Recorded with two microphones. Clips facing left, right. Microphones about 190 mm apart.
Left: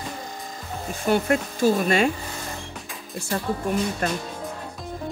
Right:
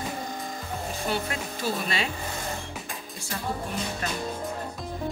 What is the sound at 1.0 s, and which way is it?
Speech, 50° left (ahead or behind).